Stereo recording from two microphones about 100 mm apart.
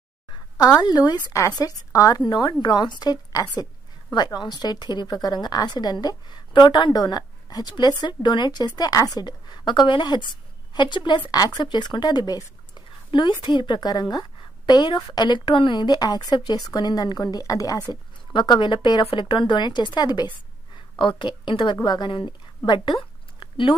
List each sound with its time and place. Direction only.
0.3 s a woman's voice: 40° left (ahead or behind)
2.2 s a woman's voice: 45° left (ahead or behind)
13.1 s a woman's voice: 55° left (ahead or behind); by 17.8 s 35° left (ahead or behind)
18.3 s a woman's voice: 50° left (ahead or behind)
22.7 s a sound: 50° left (ahead or behind)